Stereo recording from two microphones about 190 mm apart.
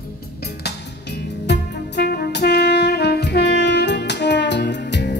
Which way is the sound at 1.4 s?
60° left (ahead or behind).